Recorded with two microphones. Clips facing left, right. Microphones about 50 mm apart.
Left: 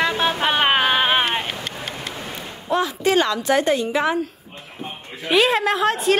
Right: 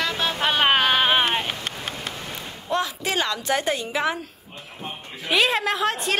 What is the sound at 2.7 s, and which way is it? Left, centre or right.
A woman's voice, centre.